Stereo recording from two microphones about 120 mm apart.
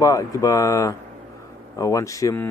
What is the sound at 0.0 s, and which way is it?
Speech, 30° left (ahead or behind).